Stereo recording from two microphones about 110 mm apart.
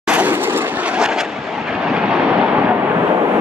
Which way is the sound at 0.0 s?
15° right (ahead or behind).